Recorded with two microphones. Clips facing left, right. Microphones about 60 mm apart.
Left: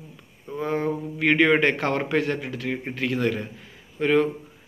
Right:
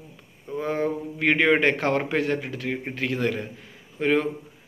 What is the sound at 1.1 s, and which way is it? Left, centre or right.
A man's voice, right.